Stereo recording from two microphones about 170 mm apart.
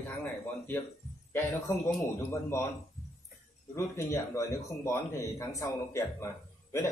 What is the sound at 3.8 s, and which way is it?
Speech, 15° left (ahead or behind).